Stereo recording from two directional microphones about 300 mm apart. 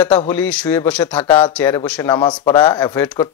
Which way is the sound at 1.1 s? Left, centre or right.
Centre.